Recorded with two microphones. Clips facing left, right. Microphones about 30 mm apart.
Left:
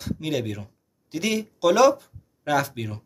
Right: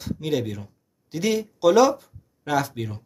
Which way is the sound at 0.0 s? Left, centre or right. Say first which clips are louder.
Right 1 dB; centre.